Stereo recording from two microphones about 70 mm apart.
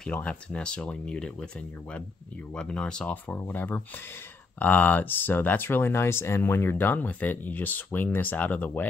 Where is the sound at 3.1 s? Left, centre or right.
Left.